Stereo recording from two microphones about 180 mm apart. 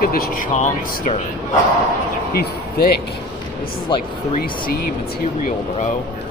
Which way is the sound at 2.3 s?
60° left (ahead or behind).